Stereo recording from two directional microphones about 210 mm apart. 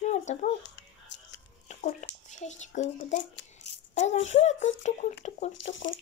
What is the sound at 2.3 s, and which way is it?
A child's voice, 35° left (ahead or behind).